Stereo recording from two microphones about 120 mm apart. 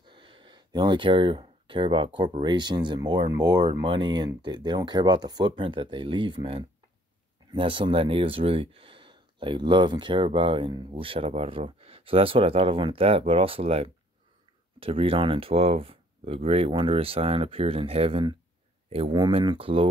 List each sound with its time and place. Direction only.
0.0 s speech: 45° right (ahead or behind)
19.1 s speech: 40° right (ahead or behind)